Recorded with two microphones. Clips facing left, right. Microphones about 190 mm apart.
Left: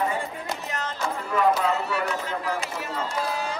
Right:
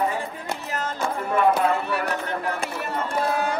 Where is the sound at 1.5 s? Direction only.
60° right (ahead or behind).